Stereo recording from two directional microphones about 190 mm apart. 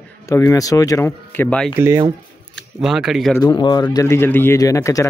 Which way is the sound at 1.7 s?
15° right (ahead or behind).